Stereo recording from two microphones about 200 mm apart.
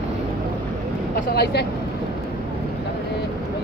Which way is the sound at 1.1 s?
50° left (ahead or behind).